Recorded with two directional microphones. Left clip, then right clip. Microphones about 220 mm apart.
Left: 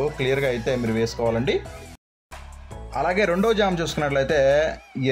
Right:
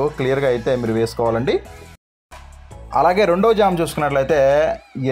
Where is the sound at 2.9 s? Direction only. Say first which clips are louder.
Right 9 dB; 15° right (ahead or behind).